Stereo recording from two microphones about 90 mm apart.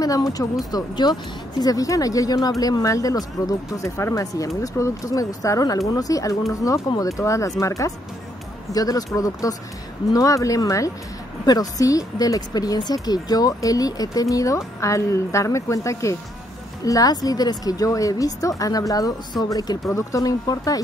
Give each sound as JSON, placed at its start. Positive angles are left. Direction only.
{"t": 0.7, "sound": "a woman's voice", "side_deg": 50}